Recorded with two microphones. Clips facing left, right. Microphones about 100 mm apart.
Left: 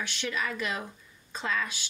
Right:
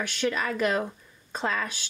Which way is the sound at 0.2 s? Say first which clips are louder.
Right 7 dB; 45° right (ahead or behind).